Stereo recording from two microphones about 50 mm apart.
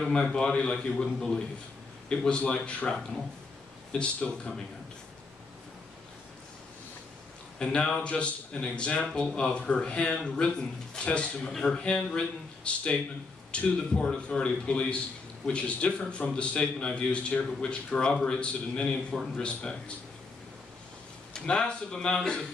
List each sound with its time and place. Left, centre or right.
0.0 s a man's voice: centre
4.0 s speech: left
7.5 s a man's voice: centre
21.3 s a man's voice: centre